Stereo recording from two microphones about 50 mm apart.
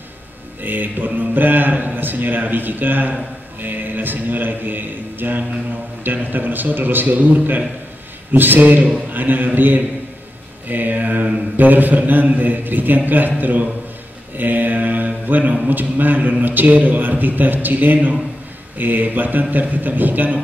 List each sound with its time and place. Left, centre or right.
0.6 s a man's voice: right
3.6 s a sound: right
6.0 s a man's voice: right
14.3 s mantra: right
15.7 s a man's voice: right